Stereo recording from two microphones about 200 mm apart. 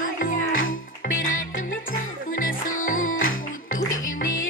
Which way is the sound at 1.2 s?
90° left.